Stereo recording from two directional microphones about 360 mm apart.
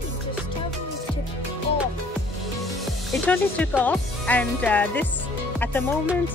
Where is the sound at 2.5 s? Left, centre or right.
Centre.